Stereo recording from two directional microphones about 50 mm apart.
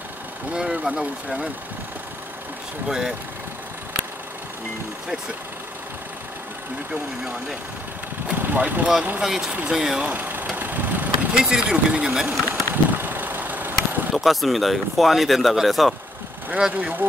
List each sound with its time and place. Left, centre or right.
0.5 s speech: centre
2.9 s speech: centre
8.4 s vehicle: right
9.2 s speech: centre
10.0 s speech: right
10.4 s vehicle: right
11.3 s speech: centre
12.3 s vehicle: right
14.1 s speech: centre
16.7 s speech: right